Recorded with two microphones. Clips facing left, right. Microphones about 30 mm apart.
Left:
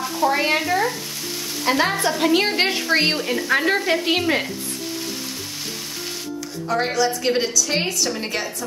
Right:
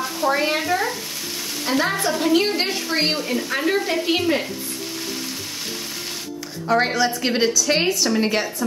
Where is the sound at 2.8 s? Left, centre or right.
Centre.